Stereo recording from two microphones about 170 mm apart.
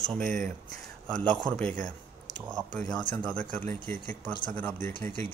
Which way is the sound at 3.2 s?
5° left (ahead or behind).